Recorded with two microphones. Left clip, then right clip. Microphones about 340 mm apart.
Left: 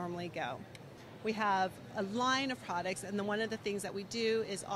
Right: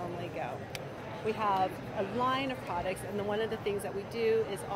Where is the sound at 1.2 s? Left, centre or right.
Left.